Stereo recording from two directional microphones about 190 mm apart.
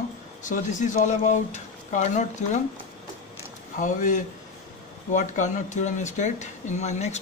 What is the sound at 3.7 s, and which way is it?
Speech, 40° left (ahead or behind).